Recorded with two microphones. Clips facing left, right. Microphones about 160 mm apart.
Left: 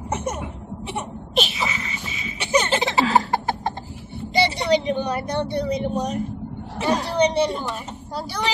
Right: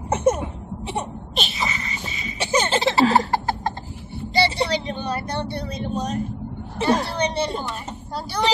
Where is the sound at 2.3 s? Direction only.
35° right (ahead or behind).